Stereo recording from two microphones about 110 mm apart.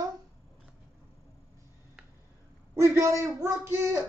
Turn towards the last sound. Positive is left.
turn(degrees=-20)  # may be behind; listen again after turning